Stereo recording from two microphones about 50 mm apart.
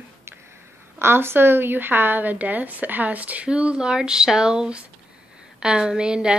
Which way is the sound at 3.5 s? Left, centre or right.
Right.